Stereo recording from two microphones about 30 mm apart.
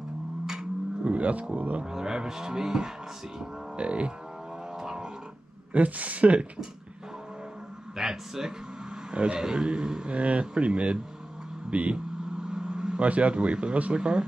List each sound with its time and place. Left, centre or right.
1.0 s speech: right
1.9 s cattle: right
3.7 s a man's voice: right
5.7 s speech: right
8.0 s speech: centre
9.1 s a man's voice: right
9.4 s cattle: right
10.1 s a man's voice: right
11.7 s speech: right
12.4 s vehicle: right
13.0 s a man's voice: right